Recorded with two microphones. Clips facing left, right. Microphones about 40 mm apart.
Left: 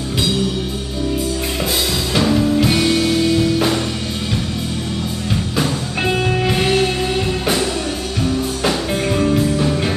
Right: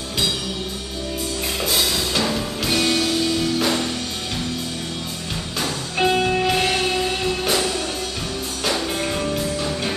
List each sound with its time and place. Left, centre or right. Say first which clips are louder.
2.1 s music: left 8 dB; centre
5.9 s music: right 1 dB; centre
8.6 s music: left 3 dB; centre